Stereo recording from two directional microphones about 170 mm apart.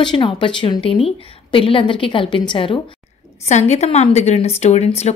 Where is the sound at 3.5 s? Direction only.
40° left (ahead or behind).